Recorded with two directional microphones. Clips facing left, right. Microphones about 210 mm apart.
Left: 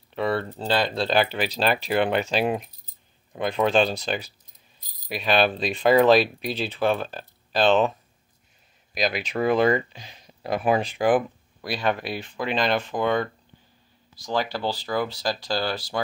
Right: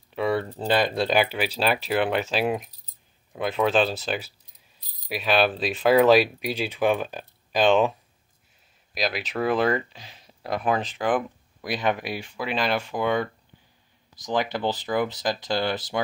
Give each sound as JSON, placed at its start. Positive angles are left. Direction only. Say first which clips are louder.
{"t": 0.1, "sound": "a sound", "louder": "right 1 dB", "side_deg": -10}
{"t": 0.7, "sound": "speech", "louder": "right 1 dB", "side_deg": -15}
{"t": 8.9, "sound": "speech", "louder": "left 2 dB", "side_deg": 0}
{"t": 11.6, "sound": "speech", "louder": "even", "side_deg": -15}